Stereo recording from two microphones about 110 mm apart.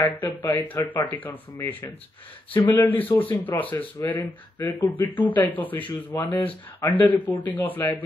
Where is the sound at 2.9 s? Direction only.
15° left (ahead or behind).